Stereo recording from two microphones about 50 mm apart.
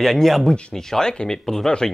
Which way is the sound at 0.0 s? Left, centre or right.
Centre.